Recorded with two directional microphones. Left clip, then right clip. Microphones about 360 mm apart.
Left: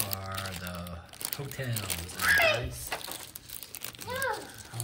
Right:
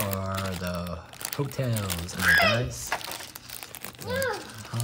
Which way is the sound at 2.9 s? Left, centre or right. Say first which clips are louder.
Right 5 dB; centre.